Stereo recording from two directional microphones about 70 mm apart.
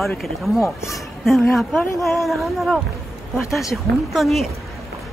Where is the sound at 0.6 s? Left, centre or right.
Left.